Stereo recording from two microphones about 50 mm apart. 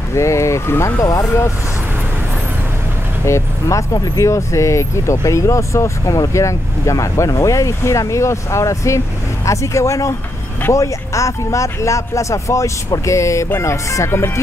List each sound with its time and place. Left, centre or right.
0.1 s speech: left
3.3 s speech: left